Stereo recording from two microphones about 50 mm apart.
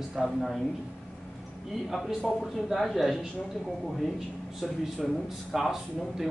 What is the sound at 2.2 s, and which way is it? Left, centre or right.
Speech, centre.